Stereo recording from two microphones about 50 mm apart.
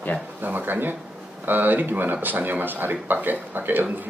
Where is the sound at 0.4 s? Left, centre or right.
Right.